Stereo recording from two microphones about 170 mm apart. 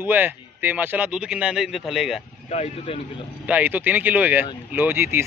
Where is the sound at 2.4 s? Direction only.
40° left (ahead or behind).